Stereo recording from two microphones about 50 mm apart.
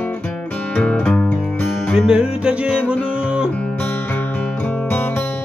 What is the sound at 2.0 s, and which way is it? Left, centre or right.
Music, centre.